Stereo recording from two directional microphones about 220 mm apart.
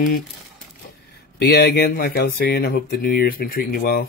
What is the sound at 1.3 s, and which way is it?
Speech, 45° left (ahead or behind).